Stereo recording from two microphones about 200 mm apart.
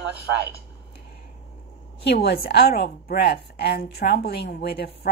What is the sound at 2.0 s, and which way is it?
A woman's voice, 55° left (ahead or behind).